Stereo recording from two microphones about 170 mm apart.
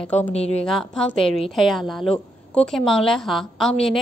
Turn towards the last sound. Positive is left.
turn(degrees=0)  # may be behind; listen again after turning